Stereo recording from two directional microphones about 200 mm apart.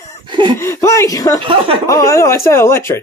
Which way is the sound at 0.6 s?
15° left (ahead or behind).